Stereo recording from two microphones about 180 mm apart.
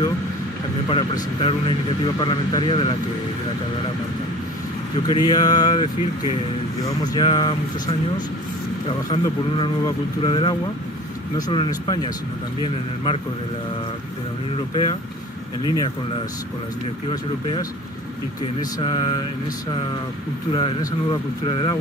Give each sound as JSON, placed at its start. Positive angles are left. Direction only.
{"t": 0.8, "sound": "speech", "side_deg": 30}
{"t": 5.0, "sound": "speech", "side_deg": 20}
{"t": 14.7, "sound": "speech", "side_deg": 25}
{"t": 17.1, "sound": "speech", "side_deg": 20}
{"t": 20.5, "sound": "speech", "side_deg": 25}